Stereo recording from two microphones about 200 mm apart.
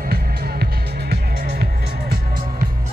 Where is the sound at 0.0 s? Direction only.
50° right (ahead or behind).